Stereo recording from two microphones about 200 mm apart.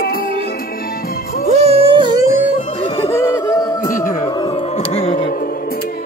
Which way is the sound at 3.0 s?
15° left (ahead or behind).